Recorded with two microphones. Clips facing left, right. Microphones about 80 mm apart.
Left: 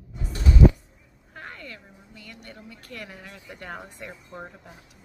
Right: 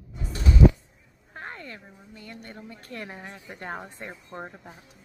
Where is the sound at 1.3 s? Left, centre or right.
Right.